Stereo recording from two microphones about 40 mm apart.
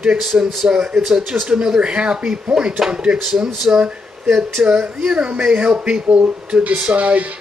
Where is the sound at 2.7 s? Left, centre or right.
Centre.